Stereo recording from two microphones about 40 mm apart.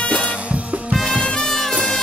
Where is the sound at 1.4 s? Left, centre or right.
Centre.